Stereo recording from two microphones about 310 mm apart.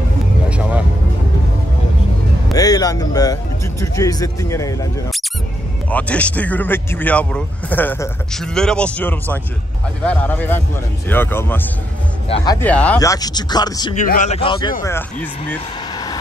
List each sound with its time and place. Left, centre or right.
0.5 s music: centre
2.5 s a man's voice: centre
14.0 s a man's voice: left; by 15.0 s centre
15.5 s vehicle: centre